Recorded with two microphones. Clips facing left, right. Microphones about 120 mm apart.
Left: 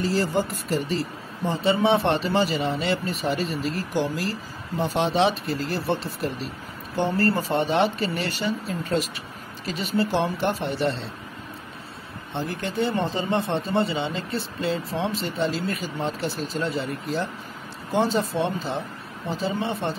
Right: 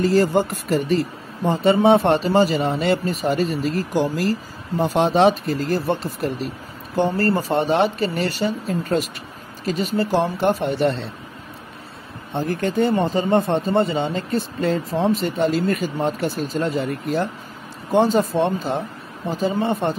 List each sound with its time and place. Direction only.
0.0 s a man's voice: 55° right (ahead or behind)
12.4 s a man's voice: 50° right (ahead or behind)